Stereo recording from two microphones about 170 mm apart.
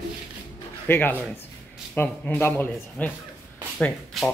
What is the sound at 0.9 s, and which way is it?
Speech, 10° left (ahead or behind).